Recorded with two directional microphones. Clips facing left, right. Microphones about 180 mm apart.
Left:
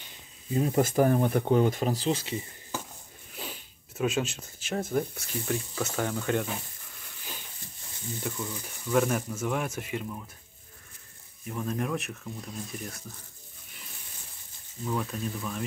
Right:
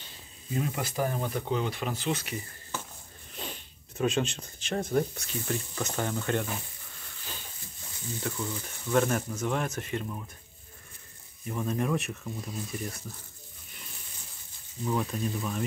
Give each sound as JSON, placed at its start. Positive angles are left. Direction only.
{"t": 0.5, "sound": "speech", "side_deg": 30}
{"t": 0.8, "sound": "speech", "side_deg": 50}
{"t": 3.3, "sound": "speech", "side_deg": 5}
{"t": 8.4, "sound": "speech", "side_deg": 0}
{"t": 11.4, "sound": "speech", "side_deg": 0}
{"t": 14.9, "sound": "speech", "side_deg": -10}